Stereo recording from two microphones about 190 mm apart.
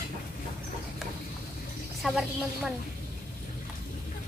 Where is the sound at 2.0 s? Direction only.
Centre (ahead or behind).